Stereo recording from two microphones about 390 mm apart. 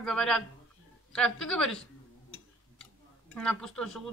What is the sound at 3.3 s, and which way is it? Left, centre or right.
Speech, centre.